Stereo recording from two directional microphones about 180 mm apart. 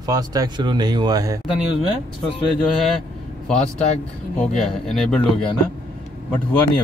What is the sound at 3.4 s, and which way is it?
Speech, 5° left (ahead or behind).